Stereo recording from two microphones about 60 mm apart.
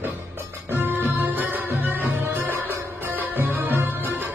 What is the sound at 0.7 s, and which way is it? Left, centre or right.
Music, right.